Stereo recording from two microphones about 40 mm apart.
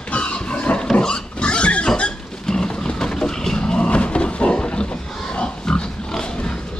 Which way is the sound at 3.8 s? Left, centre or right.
Left.